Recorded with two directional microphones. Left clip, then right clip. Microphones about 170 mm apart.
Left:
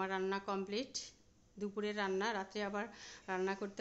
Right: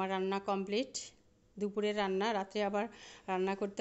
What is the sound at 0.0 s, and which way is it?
A woman's voice, 25° right (ahead or behind).